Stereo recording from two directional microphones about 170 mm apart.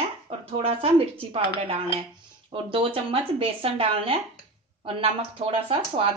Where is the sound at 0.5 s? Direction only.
35° right (ahead or behind).